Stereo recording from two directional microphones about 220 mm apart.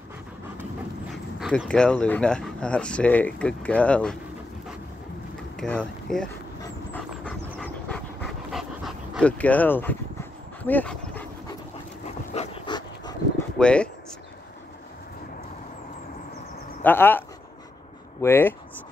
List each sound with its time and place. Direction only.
1.1 s speech: centre (ahead or behind)
5.6 s speech: 5° left (ahead or behind)
6.6 s pant: 10° left (ahead or behind)
10.6 s dog: 10° left (ahead or behind)
12.4 s dog: 25° left (ahead or behind)
13.6 s speech: 5° left (ahead or behind)
16.8 s speech: 10° left (ahead or behind)
18.2 s speech: 10° left (ahead or behind)